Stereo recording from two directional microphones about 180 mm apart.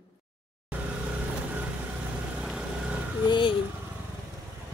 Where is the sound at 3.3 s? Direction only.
25° left (ahead or behind).